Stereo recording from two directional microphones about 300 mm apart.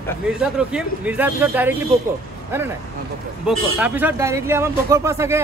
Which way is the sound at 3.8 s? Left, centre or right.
Centre.